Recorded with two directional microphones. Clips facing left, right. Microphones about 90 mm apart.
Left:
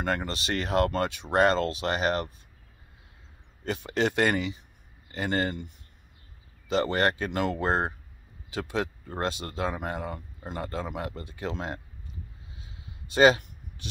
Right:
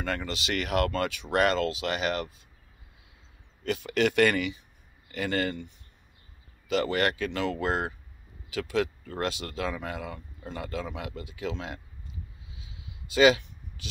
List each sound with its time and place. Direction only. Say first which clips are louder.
0.0 s speech: left 2 dB; 40° left (ahead or behind)
3.6 s speech: right 1 dB; 35° left (ahead or behind)
6.7 s speech: left 1 dB; 35° left (ahead or behind)
12.5 s a sound: right 1 dB; 40° left (ahead or behind)